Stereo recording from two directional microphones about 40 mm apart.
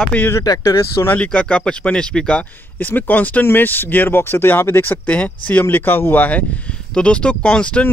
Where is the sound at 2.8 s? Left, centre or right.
Left.